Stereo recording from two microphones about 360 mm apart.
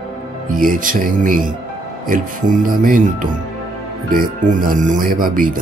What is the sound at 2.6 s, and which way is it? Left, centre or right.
Speech, right.